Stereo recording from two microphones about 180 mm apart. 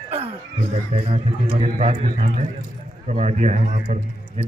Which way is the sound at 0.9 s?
30° right (ahead or behind).